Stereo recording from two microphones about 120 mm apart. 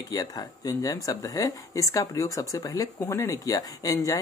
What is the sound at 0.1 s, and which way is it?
Speech, 30° left (ahead or behind).